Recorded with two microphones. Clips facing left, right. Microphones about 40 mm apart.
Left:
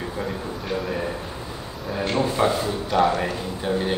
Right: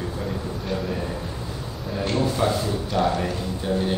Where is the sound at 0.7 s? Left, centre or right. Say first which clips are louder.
Left 1 dB; centre.